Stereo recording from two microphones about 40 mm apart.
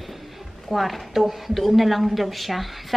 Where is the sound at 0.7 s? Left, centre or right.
Centre.